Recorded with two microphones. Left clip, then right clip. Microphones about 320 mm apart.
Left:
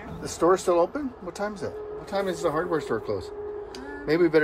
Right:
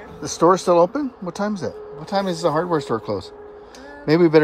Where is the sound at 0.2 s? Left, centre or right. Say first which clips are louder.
Right 6 dB; right.